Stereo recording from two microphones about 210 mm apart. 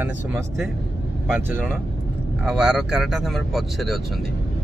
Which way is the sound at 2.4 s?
Centre (ahead or behind).